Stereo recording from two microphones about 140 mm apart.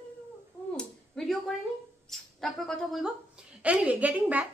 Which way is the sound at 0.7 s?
5° left (ahead or behind).